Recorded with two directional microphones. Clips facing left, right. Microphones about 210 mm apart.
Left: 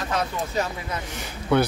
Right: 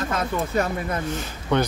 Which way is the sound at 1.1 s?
10° left (ahead or behind).